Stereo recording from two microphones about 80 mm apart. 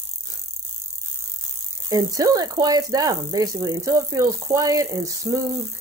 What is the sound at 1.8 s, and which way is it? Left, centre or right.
Speech, right.